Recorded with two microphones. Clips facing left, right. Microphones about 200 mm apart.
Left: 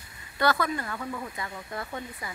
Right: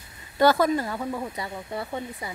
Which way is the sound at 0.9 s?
30° right (ahead or behind).